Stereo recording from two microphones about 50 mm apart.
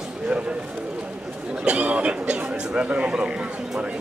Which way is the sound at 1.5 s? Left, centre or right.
Right.